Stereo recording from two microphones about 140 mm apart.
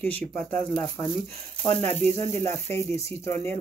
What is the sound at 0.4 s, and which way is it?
Speech, 10° left (ahead or behind).